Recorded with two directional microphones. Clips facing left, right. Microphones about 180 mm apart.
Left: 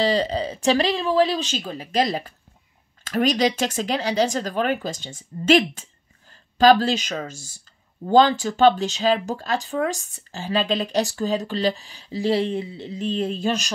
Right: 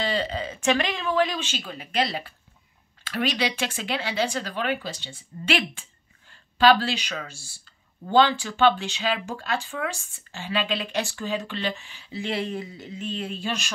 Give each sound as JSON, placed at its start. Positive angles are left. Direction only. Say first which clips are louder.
{"t": 0.0, "sound": "speech", "louder": "left 6 dB", "side_deg": 35}